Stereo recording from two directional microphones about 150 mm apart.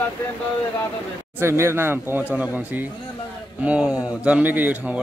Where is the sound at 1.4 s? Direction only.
15° right (ahead or behind).